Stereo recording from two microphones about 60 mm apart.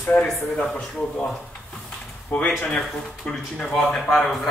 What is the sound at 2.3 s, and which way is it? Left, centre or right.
Speech, left.